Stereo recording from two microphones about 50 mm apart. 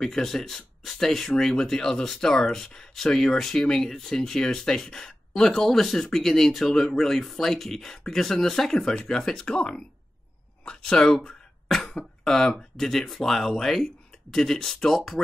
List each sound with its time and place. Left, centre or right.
0.0 s speech: centre
11.1 s throat clearing: centre
12.3 s speech: centre